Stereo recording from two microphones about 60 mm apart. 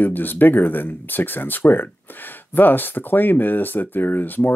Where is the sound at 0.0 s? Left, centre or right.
Left.